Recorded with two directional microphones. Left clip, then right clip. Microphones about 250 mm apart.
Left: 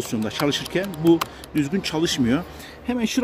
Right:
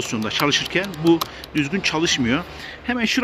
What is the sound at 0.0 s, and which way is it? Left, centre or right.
Speech, centre.